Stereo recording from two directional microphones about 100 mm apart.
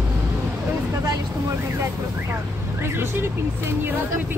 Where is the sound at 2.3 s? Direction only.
25° right (ahead or behind).